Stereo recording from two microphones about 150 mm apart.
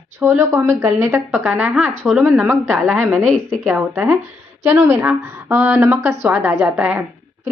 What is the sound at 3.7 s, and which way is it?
A woman's voice, 15° right (ahead or behind).